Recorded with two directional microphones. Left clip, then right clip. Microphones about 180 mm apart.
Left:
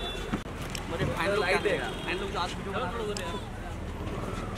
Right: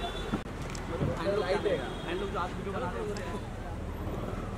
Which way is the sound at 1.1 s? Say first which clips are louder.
Left 4 dB; 20° left (ahead or behind).